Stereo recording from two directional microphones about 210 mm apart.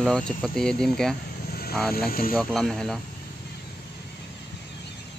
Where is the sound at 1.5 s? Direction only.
45° left (ahead or behind).